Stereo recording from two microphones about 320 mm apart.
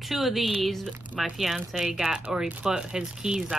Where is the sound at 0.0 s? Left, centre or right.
Centre.